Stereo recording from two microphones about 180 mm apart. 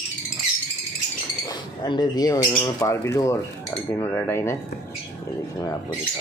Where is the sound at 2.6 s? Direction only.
15° left (ahead or behind).